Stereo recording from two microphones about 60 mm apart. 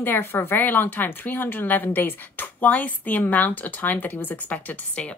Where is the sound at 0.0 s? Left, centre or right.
Left.